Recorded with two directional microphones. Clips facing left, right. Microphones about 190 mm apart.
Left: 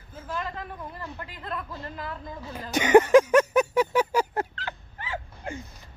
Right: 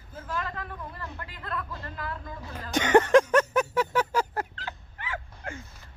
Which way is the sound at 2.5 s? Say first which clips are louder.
Left 3 dB; 10° left (ahead or behind).